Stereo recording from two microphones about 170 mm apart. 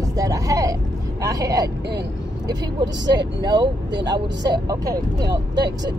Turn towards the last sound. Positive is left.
turn(degrees=-25)  # may be behind; listen again after turning